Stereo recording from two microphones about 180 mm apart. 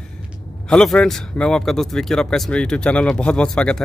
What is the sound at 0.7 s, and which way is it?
Speech, 5° left (ahead or behind).